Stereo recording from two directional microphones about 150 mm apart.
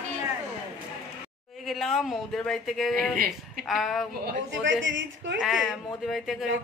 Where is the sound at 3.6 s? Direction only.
Centre (ahead or behind).